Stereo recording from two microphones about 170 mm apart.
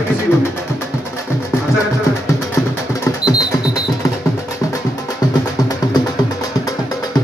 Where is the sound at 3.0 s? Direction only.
20° left (ahead or behind).